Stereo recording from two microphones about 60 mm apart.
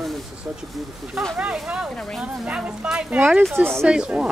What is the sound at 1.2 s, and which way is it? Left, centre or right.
Speech, centre.